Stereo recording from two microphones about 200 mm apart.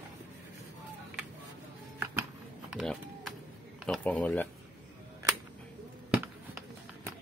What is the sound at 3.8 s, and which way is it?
Speech, 5° left (ahead or behind).